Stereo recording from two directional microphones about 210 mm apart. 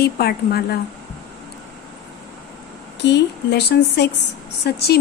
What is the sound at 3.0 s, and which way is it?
A woman's voice, 55° left (ahead or behind).